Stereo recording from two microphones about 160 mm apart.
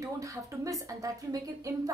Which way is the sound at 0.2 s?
20° right (ahead or behind).